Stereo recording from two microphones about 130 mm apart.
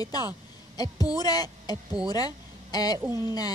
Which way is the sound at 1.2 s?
30° left (ahead or behind).